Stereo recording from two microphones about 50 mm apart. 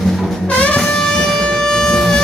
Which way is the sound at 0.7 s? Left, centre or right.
Centre.